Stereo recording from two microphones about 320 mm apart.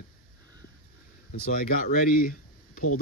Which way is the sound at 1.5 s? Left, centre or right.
Left.